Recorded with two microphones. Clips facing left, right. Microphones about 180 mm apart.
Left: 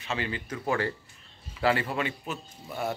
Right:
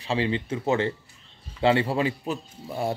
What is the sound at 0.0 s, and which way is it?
A man's voice, 30° right (ahead or behind).